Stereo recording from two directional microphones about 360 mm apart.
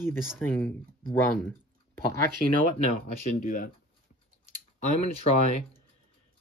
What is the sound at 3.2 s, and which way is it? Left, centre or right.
Speech, left.